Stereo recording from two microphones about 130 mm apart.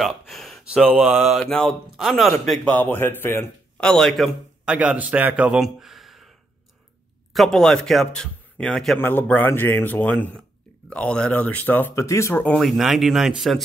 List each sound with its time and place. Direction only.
0.0 s speech: centre (ahead or behind)
2.7 s speech: 15° left (ahead or behind)
3.8 s a man's voice: 5° left (ahead or behind)
4.7 s speech: 10° right (ahead or behind)
7.3 s speech: 5° left (ahead or behind); by 12.5 s 20° left (ahead or behind)
12.5 s speech: centre (ahead or behind)